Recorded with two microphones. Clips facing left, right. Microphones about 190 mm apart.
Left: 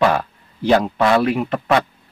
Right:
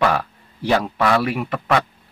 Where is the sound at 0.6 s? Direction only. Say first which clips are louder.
Left 3 dB; 25° left (ahead or behind).